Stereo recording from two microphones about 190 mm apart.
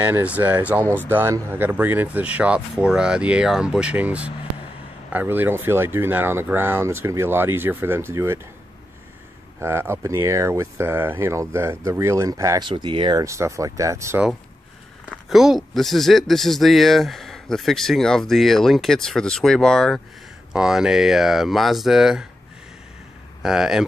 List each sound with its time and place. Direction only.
0.0 s speech: 10° right (ahead or behind)
9.6 s speech: 15° right (ahead or behind)
15.0 s speech: centre (ahead or behind)
23.4 s speech: 5° right (ahead or behind)